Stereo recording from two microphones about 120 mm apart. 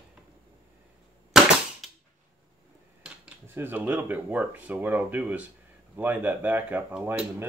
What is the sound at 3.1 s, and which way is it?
Speech, 15° right (ahead or behind).